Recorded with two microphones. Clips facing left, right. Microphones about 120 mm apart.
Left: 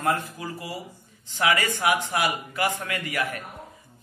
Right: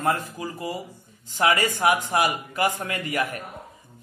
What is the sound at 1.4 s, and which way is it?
A man's voice, 45° right (ahead or behind).